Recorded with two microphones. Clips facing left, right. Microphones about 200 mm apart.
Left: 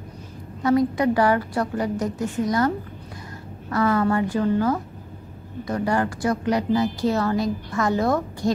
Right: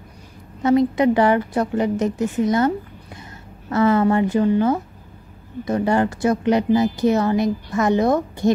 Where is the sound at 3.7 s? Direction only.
25° right (ahead or behind).